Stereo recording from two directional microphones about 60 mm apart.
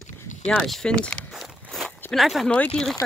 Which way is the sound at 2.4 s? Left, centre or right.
Left.